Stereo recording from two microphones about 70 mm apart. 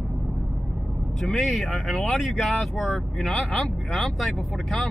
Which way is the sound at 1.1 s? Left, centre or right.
Centre.